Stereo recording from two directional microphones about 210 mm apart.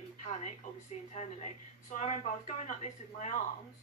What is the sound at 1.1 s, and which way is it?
Speech, 35° left (ahead or behind).